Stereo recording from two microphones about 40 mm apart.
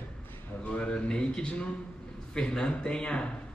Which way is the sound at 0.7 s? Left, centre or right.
Left.